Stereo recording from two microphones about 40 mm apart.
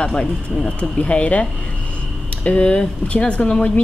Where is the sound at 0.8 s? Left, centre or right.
Left.